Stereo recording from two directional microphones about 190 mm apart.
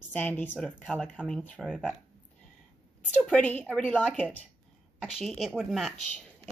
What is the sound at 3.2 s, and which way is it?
A woman's voice, 5° left (ahead or behind).